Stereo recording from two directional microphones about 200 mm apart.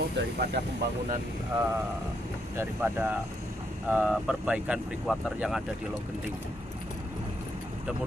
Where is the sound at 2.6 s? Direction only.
10° right (ahead or behind).